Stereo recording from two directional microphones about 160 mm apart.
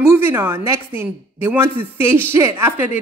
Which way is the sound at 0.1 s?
15° right (ahead or behind).